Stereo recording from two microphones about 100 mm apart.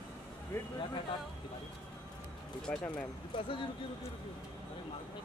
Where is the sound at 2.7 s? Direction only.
15° left (ahead or behind).